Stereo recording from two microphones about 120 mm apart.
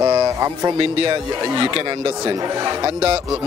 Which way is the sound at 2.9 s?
55° right (ahead or behind).